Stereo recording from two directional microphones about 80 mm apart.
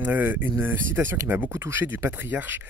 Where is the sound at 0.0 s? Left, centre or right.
Right.